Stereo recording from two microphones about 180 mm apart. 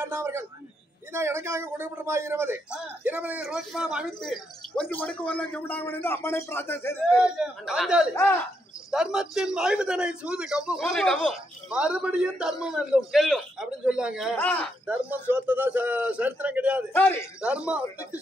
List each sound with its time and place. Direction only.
0.0 s a man's voice: 15° right (ahead or behind); by 7.2 s 15° left (ahead or behind)
7.2 s speech: 5° right (ahead or behind)
8.1 s a man's voice: 15° left (ahead or behind)
8.9 s speech: 5° right (ahead or behind)
14.3 s a man's voice: 10° left (ahead or behind)
14.9 s a man's voice: 10° right (ahead or behind)
16.9 s a man's voice: 10° left (ahead or behind)
17.4 s a man's voice: 5° right (ahead or behind)